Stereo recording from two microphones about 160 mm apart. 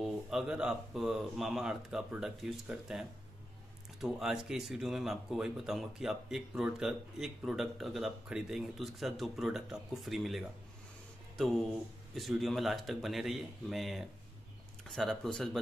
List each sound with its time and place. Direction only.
0.0 s speech: centre (ahead or behind)